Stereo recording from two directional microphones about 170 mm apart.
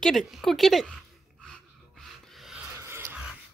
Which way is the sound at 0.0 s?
Centre (ahead or behind).